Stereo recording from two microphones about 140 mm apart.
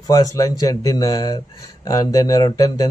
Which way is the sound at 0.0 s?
25° left (ahead or behind).